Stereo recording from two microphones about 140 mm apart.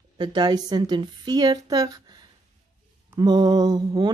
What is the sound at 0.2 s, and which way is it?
A woman's voice, 35° right (ahead or behind).